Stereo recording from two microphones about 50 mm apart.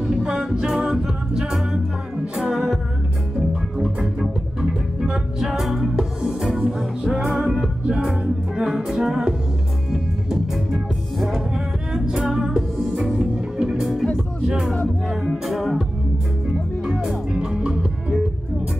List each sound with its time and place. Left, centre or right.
0.0 s a capella: centre
2.5 s music: centre
7.8 s music: right
8.6 s music: centre
13.1 s music: centre
17.0 s music: centre